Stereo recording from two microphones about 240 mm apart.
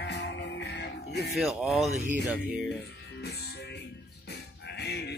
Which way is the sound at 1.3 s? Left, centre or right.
Centre.